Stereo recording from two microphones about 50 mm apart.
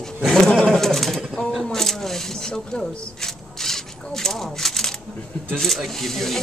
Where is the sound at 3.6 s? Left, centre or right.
Centre.